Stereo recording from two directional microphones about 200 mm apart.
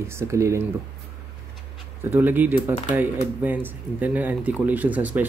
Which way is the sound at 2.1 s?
10° right (ahead or behind).